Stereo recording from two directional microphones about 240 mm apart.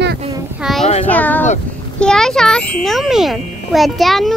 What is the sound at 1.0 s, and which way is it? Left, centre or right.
A child's voice, centre.